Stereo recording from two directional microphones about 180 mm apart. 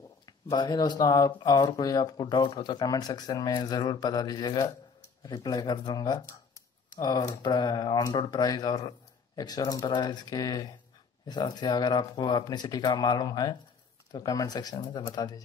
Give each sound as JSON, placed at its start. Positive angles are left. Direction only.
{"t": 0.5, "sound": "speech", "side_deg": 25}